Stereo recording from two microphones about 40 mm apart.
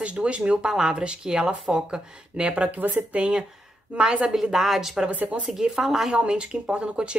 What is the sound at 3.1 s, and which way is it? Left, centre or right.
Speech, right.